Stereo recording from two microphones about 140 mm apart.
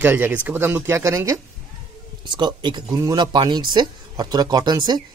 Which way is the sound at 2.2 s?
35° right (ahead or behind).